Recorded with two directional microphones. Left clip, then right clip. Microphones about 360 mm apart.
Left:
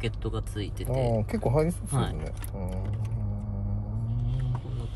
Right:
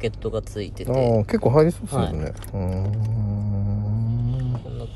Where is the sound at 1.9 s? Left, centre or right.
Centre.